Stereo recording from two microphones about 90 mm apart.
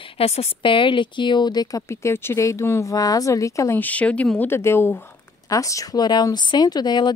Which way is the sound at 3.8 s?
15° left (ahead or behind).